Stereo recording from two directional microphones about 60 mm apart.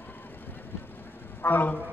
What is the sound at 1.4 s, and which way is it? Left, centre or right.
Speech, left.